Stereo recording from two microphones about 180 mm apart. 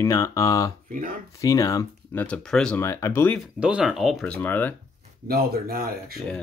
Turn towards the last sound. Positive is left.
turn(degrees=-55)  # may be behind; listen again after turning